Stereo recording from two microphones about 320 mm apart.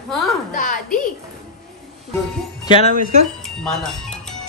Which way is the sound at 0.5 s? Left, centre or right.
Left.